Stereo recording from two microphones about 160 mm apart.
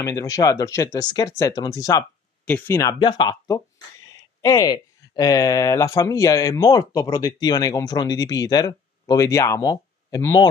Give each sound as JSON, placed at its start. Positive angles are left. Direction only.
{"t": 0.0, "sound": "speech", "side_deg": 20}
{"t": 3.0, "sound": "speech", "side_deg": 30}